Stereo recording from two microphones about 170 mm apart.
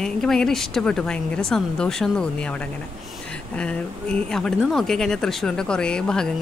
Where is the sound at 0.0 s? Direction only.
5° left (ahead or behind).